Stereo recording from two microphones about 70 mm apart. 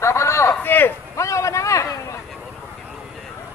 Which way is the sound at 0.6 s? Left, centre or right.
Left.